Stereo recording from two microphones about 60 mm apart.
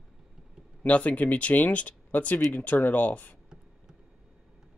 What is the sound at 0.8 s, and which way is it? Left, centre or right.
Speech, left.